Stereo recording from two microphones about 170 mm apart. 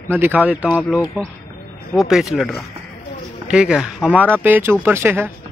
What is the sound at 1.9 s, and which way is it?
Speech, centre (ahead or behind).